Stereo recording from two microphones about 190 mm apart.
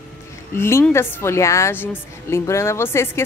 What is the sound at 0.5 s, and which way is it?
Speech, 15° left (ahead or behind).